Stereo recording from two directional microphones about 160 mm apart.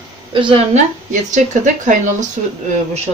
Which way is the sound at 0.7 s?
50° right (ahead or behind).